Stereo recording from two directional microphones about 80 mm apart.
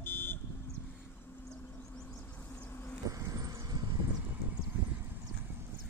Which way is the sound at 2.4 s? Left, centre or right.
Left.